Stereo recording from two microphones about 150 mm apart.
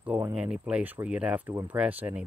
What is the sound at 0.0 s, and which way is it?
Speech, 10° right (ahead or behind).